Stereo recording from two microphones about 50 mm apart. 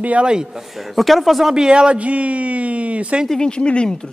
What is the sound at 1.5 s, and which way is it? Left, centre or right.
Speech, centre.